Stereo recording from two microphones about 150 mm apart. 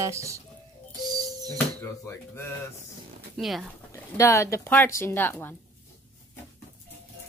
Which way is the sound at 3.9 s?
20° left (ahead or behind).